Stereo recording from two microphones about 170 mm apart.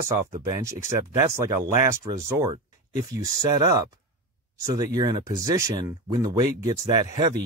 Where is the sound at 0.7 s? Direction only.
15° right (ahead or behind).